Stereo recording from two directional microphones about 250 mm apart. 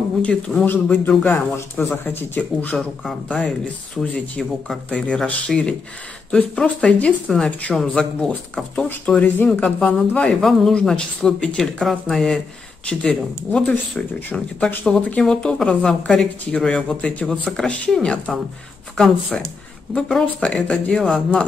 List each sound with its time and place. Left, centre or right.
0.2 s speech: centre